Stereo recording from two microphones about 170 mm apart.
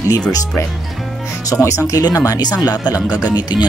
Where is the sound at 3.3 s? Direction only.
25° left (ahead or behind).